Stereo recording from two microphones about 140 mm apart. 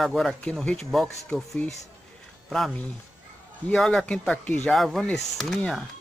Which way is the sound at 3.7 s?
5° left (ahead or behind).